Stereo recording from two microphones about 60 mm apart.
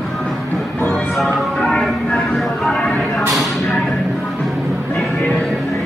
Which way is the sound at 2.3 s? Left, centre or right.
Centre.